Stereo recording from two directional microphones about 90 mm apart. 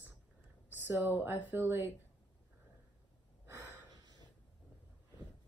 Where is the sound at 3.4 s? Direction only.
25° right (ahead or behind).